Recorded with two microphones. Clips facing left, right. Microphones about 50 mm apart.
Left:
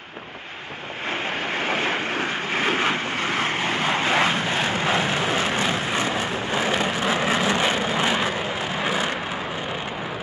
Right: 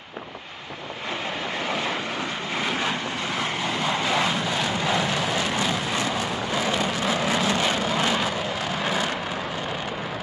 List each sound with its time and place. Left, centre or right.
1.7 s vehicle: left; by 9.1 s centre